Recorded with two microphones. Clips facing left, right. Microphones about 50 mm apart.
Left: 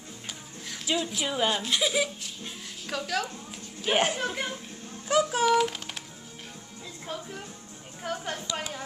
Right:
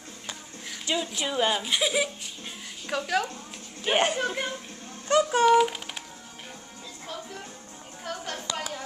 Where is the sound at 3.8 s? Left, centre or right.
Centre.